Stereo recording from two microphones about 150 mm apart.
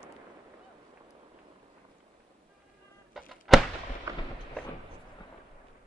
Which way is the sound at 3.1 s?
Centre (ahead or behind).